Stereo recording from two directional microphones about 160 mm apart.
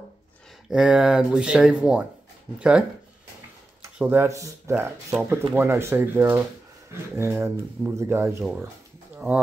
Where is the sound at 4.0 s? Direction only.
15° right (ahead or behind).